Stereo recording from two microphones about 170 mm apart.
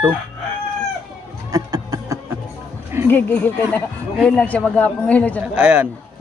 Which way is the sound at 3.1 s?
10° left (ahead or behind).